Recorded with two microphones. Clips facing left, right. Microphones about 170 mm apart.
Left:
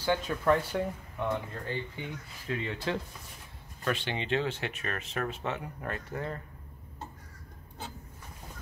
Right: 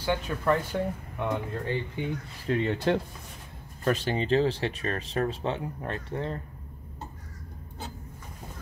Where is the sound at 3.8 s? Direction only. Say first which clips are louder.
Right 6 dB; 40° right (ahead or behind).